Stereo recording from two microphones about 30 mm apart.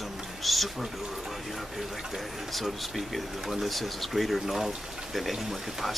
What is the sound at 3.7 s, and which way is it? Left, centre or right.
Speech, centre.